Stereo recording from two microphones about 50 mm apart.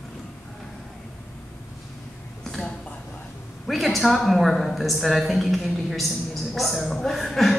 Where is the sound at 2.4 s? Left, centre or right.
Centre.